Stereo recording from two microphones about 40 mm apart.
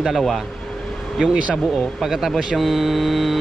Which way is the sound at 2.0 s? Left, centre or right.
Centre.